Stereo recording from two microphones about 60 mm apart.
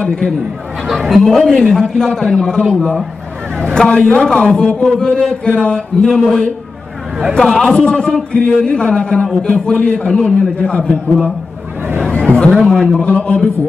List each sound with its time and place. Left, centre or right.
0.0 s a man's voice: centre
1.0 s a man's voice: centre
12.0 s chatter: centre
12.5 s a man's voice: centre
13.0 s a man's voice: left